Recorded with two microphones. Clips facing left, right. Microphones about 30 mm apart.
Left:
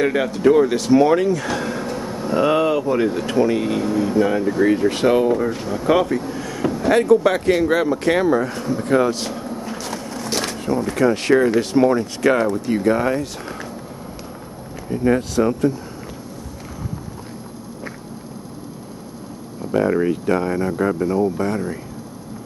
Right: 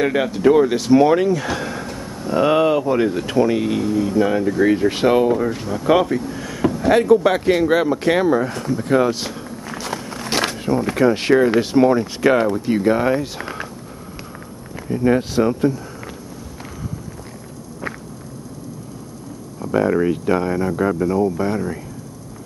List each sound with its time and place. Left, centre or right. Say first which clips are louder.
0.0 s speech: even; centre
2.3 s speech: right 2 dB; centre
6.2 s a sound: right 2 dB; centre
6.7 s speech: right 1 dB; centre
9.7 s walk: right 1 dB; centre
10.5 s a sound: right 1 dB; centre
11.0 s speech: right 1 dB; centre
14.9 s speech: right 1 dB; centre
19.7 s speech: right 1 dB; centre